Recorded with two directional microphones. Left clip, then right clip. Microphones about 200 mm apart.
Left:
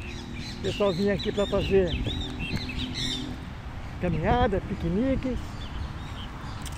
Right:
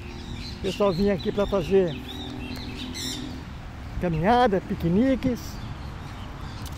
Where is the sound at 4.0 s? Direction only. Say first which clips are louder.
Right 5 dB; 25° right (ahead or behind).